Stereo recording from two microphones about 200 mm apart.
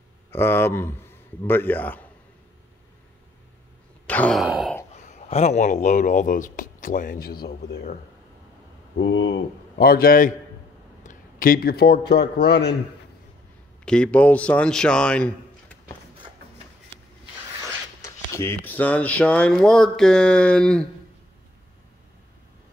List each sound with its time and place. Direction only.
0.3 s a man's voice: 10° left (ahead or behind)
4.1 s sigh: 5° left (ahead or behind)
4.9 s speech: 35° left (ahead or behind); by 8.0 s 50° left (ahead or behind)
8.9 s speech: 60° left (ahead or behind)
11.1 s a sound: 45° left (ahead or behind)
12.1 s speech: 55° left (ahead or behind)
13.8 s a man's voice: 5° left (ahead or behind)
18.0 s speech: 15° left (ahead or behind)